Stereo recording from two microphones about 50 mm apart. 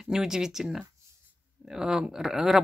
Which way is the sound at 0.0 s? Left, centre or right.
Centre.